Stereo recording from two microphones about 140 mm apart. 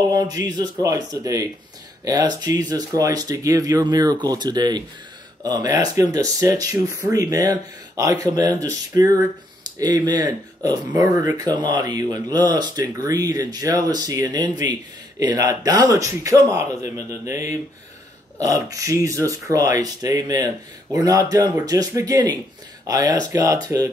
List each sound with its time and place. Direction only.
0.1 s speech: 25° right (ahead or behind)